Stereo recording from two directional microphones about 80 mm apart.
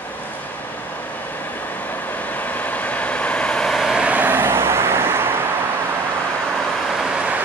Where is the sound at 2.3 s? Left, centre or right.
Left; by 3.9 s centre.